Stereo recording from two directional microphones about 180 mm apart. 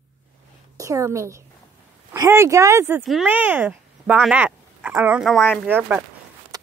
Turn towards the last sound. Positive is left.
turn(degrees=-10)  # may be behind; listen again after turning